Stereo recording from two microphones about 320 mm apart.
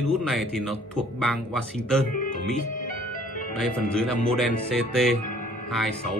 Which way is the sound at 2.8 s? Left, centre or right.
Left.